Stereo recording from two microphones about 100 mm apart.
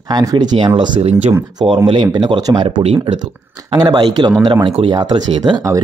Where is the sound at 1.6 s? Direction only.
70° right (ahead or behind).